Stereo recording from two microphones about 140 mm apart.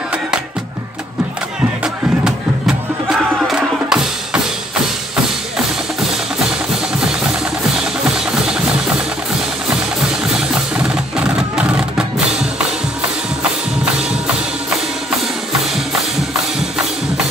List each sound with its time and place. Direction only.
2.2 s music: 5° right (ahead or behind)
7.7 s music: 5° right (ahead or behind)
10.2 s music: 5° right (ahead or behind)